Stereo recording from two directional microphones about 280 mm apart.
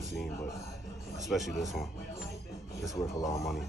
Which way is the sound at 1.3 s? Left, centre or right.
Centre.